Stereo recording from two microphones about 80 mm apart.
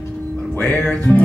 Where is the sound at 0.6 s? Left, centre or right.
Centre.